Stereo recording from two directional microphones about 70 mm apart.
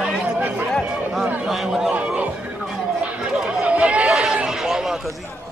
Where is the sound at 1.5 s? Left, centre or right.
Centre.